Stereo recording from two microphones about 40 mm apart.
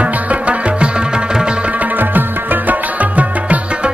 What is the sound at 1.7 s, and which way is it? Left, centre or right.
Music, right.